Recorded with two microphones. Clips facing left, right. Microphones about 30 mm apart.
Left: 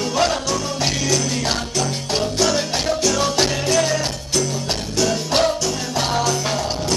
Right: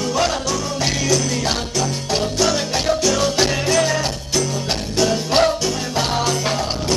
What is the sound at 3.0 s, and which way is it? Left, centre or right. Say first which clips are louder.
Music: left 1 dB; centre.